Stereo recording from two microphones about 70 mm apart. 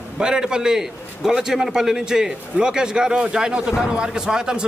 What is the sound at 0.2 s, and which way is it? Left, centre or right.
A man's voice, centre.